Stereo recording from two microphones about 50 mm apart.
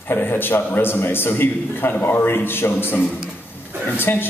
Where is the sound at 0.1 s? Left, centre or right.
Left.